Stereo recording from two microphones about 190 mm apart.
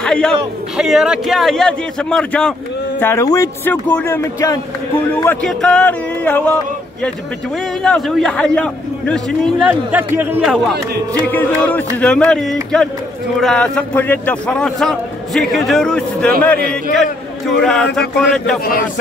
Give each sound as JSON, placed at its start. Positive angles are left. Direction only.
{"t": 0.0, "sound": "a man's voice", "side_deg": 5}
{"t": 9.7, "sound": "a man's voice", "side_deg": -10}
{"t": 11.2, "sound": "a man's voice", "side_deg": 10}
{"t": 16.5, "sound": "a man's voice", "side_deg": -55}
{"t": 16.9, "sound": "a man's voice", "side_deg": 0}